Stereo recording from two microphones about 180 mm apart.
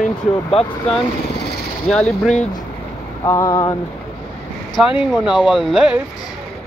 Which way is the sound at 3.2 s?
15° left (ahead or behind).